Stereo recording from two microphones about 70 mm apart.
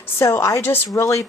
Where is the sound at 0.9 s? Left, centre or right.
Left.